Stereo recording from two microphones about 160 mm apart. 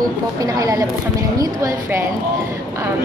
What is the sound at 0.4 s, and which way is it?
A woman's voice, 20° right (ahead or behind).